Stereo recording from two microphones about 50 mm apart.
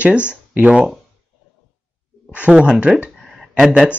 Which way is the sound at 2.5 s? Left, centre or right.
Centre.